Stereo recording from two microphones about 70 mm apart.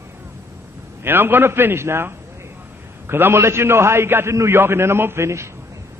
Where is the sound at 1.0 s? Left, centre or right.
Right.